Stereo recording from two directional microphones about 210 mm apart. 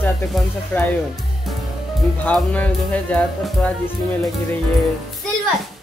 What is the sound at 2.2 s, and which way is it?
Speech, 5° left (ahead or behind).